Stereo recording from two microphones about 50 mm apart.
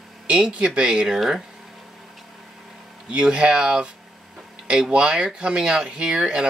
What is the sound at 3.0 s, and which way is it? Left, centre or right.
Speech, centre.